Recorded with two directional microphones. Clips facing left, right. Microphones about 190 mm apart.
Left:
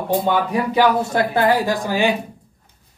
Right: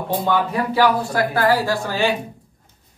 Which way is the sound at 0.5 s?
20° left (ahead or behind).